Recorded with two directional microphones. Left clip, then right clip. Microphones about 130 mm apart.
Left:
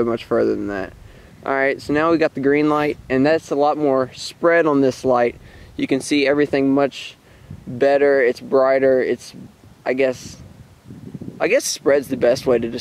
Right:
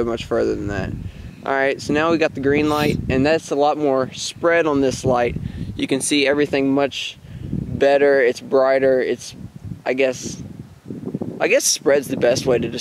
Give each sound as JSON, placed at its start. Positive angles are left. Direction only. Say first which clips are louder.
{"t": 0.0, "sound": "speech", "louder": "left 2 dB", "side_deg": 30}
{"t": 11.3, "sound": "speech", "louder": "right 1 dB", "side_deg": 30}